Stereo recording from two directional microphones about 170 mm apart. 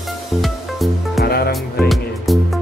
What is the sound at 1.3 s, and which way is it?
Music, 65° left (ahead or behind).